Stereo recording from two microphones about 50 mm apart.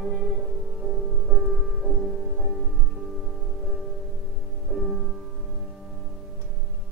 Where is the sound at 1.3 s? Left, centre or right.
Centre.